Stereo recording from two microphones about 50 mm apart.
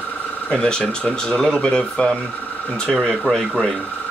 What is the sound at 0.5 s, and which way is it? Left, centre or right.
Speech, centre.